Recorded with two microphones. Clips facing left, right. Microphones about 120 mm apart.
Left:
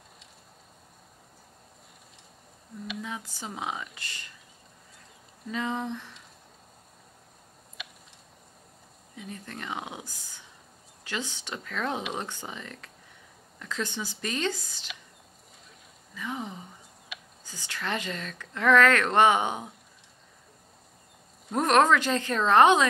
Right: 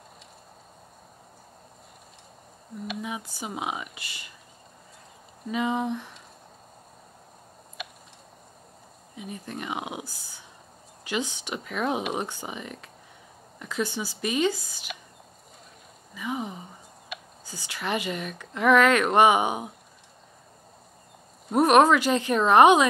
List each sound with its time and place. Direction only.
3.0 s speech: 15° right (ahead or behind)
5.5 s speech: 15° right (ahead or behind)
7.8 s a sound: 50° right (ahead or behind)
9.1 s speech: 15° right (ahead or behind)
16.2 s speech: 10° right (ahead or behind)
17.1 s whispering: 50° right (ahead or behind)
17.5 s speech: 10° right (ahead or behind)
21.5 s speech: 15° right (ahead or behind)